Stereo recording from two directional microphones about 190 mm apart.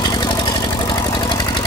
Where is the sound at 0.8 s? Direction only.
25° left (ahead or behind).